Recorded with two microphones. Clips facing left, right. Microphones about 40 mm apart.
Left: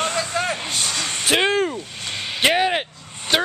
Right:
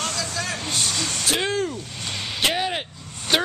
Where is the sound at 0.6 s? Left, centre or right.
Centre.